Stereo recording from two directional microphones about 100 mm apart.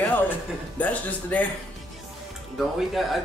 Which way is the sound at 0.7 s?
15° left (ahead or behind).